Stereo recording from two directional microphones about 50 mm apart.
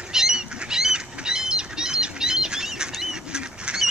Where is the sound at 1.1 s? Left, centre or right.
Centre.